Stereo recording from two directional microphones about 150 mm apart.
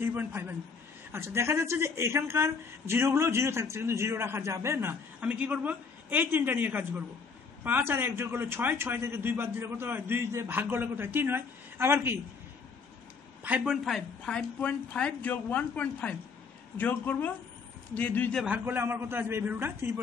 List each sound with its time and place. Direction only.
0.0 s speech: 15° right (ahead or behind)
13.4 s speech: 10° right (ahead or behind)
13.8 s a woman's voice: 5° left (ahead or behind)
18.4 s speech: 10° right (ahead or behind)